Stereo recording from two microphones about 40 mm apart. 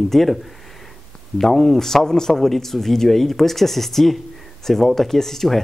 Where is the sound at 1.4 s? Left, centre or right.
Centre.